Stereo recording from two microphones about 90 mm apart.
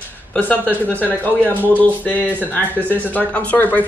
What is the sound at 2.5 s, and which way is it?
Speech, 20° left (ahead or behind).